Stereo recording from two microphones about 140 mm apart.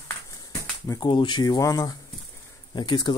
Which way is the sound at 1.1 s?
35° left (ahead or behind).